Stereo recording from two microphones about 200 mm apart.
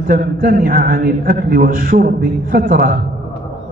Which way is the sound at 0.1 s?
45° right (ahead or behind).